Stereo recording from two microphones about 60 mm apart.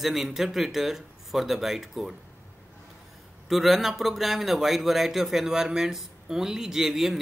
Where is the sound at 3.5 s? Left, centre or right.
Centre.